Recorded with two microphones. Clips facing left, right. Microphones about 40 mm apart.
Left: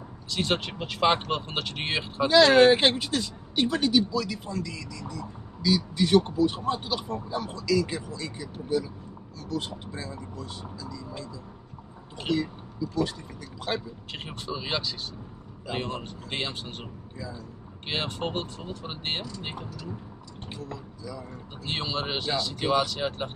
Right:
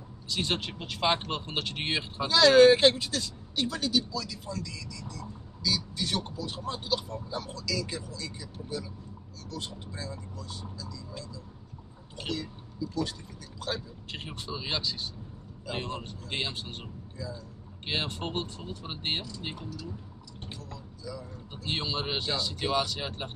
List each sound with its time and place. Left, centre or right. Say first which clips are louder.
0.3 s speech: left 3 dB; centre
2.2 s speech: left 1 dB; left
7.1 s speech: left 5 dB; left
13.6 s speech: left 4 dB; left
14.1 s speech: left 3 dB; centre
17.8 s speech: left 2 dB; centre
20.6 s a sound: left 4 dB; left
21.6 s speech: left 2 dB; centre